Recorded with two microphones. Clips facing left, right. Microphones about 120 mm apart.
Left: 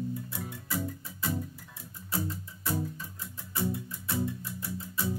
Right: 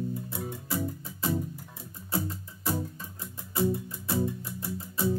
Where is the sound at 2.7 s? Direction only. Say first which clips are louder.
Right 1 dB; 20° right (ahead or behind).